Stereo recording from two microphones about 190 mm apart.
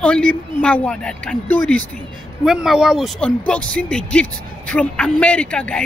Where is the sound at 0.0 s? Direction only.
5° left (ahead or behind).